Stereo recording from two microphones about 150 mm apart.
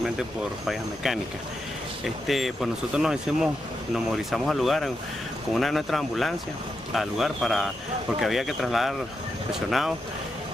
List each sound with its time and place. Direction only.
0.7 s speech: centre (ahead or behind)